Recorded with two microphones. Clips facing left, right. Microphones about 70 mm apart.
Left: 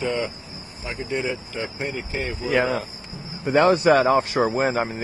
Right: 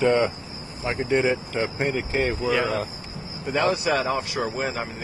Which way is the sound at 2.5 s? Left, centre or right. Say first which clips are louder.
Left 2 dB; left.